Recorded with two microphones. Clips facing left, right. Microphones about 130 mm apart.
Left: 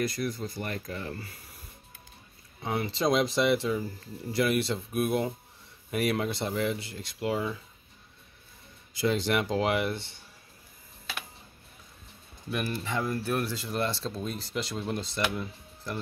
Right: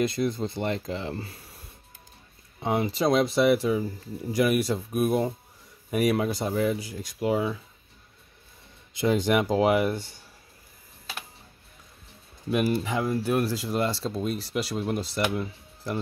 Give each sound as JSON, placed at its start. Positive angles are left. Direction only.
{"t": 0.0, "sound": "speech", "side_deg": -25}
{"t": 2.6, "sound": "speech", "side_deg": -20}
{"t": 2.9, "sound": "speech", "side_deg": -5}
{"t": 8.9, "sound": "speech", "side_deg": -15}
{"t": 9.9, "sound": "speech", "side_deg": -40}
{"t": 12.4, "sound": "speech", "side_deg": -15}